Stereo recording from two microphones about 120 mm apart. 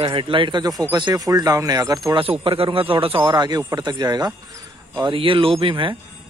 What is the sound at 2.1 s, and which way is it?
A man's voice, 50° right (ahead or behind).